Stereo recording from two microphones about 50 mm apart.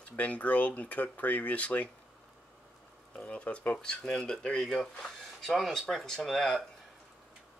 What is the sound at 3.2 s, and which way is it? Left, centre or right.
Speech, left.